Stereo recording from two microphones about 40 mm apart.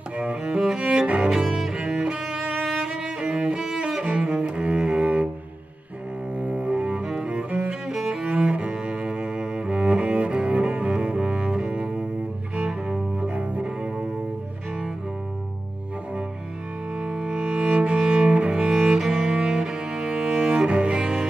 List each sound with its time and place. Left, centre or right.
0.2 s music: right
0.9 s cello: right
2.6 s music: right
3.8 s cello: right
6.5 s double bass: right
7.9 s cello: centre
8.2 s cello: right
16.9 s cello: right